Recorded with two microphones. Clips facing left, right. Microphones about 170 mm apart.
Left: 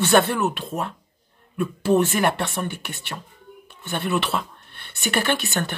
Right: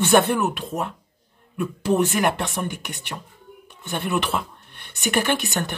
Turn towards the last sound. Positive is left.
turn(degrees=-15)  # may be behind; listen again after turning